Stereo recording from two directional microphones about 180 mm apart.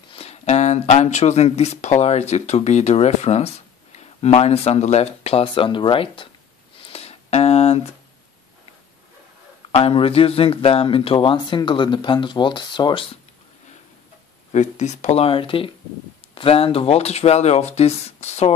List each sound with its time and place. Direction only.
0.1 s speech: 35° left (ahead or behind)
6.8 s a sound: 35° left (ahead or behind)
9.7 s speech: 35° left (ahead or behind)
14.5 s speech: 40° left (ahead or behind)